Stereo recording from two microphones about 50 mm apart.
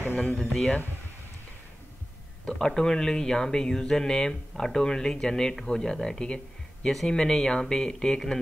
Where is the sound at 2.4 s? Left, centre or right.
Centre.